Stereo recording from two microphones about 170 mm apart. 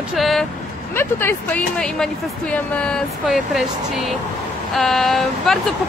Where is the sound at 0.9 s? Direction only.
15° left (ahead or behind).